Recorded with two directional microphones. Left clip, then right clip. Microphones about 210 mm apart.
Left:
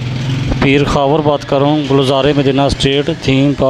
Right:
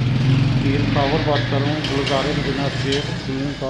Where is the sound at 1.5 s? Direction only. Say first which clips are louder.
Left 11 dB; 45° left (ahead or behind).